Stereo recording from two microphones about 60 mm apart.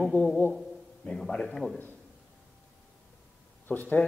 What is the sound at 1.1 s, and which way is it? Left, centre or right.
Speech, centre.